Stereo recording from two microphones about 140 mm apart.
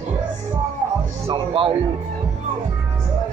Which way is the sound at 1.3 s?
40° right (ahead or behind).